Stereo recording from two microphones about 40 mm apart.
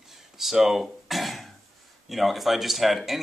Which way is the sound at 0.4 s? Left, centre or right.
Centre.